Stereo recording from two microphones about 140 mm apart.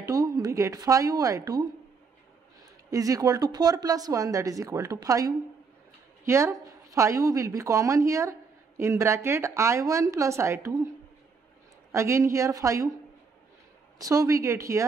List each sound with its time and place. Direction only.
0.0 s a woman's voice: 25° right (ahead or behind)
2.9 s a woman's voice: 25° right (ahead or behind)
11.9 s a woman's voice: 20° right (ahead or behind)
13.9 s a woman's voice: 25° right (ahead or behind)